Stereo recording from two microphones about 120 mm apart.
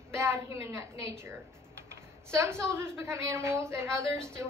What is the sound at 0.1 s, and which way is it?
A woman's voice, 25° right (ahead or behind).